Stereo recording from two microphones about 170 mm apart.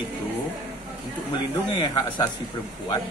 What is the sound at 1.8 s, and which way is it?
Speech, 25° left (ahead or behind).